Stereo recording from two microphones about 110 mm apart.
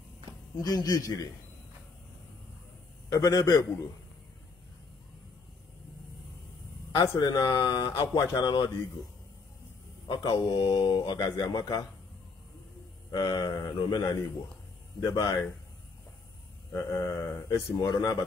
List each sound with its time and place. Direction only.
0.7 s speech: 40° left (ahead or behind)
3.1 s speech: 35° left (ahead or behind)
7.0 s speech: 35° left (ahead or behind)
10.0 s speech: 45° left (ahead or behind)
13.1 s speech: 35° left (ahead or behind)
16.7 s speech: 30° left (ahead or behind)